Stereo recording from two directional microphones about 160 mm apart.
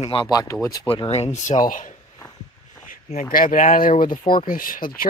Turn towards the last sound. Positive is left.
turn(degrees=65)  # may be behind; listen again after turning